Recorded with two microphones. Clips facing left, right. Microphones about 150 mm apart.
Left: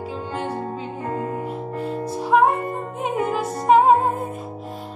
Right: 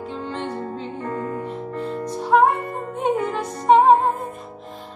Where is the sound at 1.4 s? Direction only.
5° left (ahead or behind).